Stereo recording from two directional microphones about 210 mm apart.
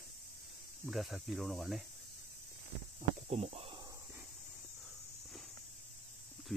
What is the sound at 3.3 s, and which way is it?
Speech, 30° right (ahead or behind).